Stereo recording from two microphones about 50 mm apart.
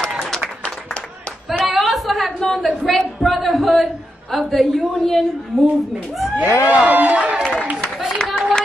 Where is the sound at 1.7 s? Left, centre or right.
Centre.